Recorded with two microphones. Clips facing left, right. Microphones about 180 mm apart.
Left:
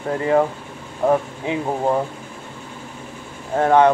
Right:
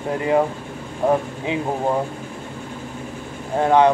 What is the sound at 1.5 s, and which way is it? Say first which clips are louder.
Speech: left 1 dB; 20° right (ahead or behind).